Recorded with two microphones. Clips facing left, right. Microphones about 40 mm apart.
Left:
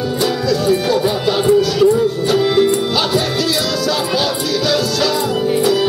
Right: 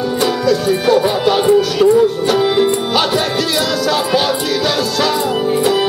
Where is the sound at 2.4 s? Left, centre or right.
Centre.